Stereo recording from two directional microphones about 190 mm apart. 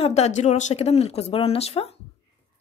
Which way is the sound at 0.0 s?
35° left (ahead or behind).